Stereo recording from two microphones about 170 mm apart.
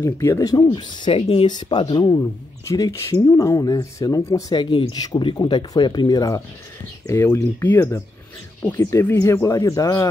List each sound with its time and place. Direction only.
0.0 s speech: 15° left (ahead or behind)